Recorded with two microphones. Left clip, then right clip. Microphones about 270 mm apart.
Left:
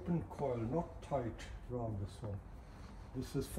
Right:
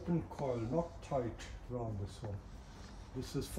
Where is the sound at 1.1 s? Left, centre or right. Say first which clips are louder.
Right 1 dB; centre.